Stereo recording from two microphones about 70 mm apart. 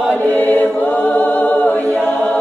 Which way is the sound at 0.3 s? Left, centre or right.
Left.